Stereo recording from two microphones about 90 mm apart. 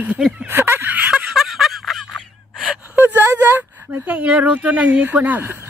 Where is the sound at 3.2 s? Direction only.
30° right (ahead or behind).